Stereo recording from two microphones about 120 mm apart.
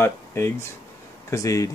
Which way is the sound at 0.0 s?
20° left (ahead or behind).